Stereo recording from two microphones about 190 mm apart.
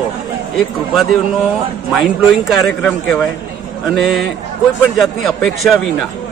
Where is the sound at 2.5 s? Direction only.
Centre (ahead or behind).